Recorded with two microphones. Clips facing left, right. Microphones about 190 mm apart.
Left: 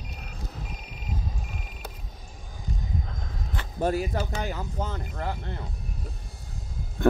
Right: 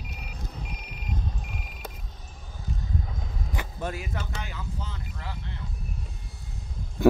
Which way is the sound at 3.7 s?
35° left (ahead or behind).